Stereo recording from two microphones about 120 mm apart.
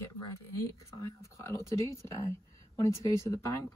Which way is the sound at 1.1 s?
25° left (ahead or behind).